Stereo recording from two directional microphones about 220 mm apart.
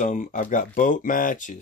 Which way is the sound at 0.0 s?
35° left (ahead or behind).